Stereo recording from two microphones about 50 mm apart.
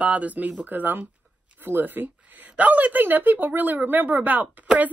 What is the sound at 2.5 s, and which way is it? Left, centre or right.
A woman's voice, right.